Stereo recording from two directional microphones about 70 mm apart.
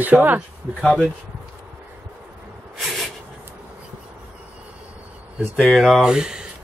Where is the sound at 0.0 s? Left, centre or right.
Right.